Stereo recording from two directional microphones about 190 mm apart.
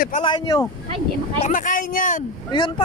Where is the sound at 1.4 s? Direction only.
45° left (ahead or behind).